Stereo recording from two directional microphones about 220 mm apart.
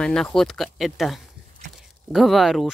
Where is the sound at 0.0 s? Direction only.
5° left (ahead or behind).